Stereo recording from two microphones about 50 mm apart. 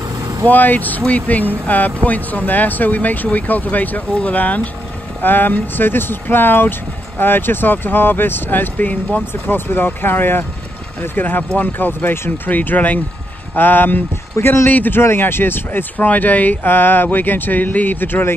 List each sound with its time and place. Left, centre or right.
0.5 s speech: left
5.2 s speech: left
9.3 s speech: left
14.4 s speech: left
14.7 s speech: left
16.1 s speech: left